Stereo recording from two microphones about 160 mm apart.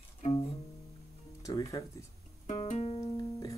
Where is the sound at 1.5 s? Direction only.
20° left (ahead or behind).